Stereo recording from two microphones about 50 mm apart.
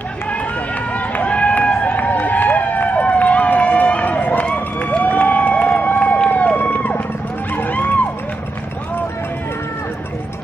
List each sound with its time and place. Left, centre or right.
0.9 s run: left
4.6 s a sound: left
7.5 s music: left